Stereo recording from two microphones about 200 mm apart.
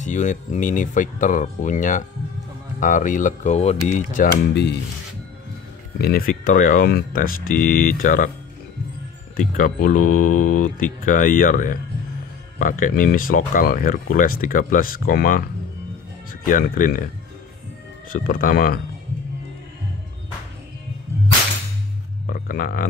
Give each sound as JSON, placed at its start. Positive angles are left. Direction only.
{"t": 0.0, "sound": "speech", "side_deg": 40}
{"t": 5.9, "sound": "speech", "side_deg": 50}
{"t": 9.4, "sound": "speech", "side_deg": 40}
{"t": 18.1, "sound": "speech", "side_deg": 45}
{"t": 22.2, "sound": "a sound", "side_deg": 45}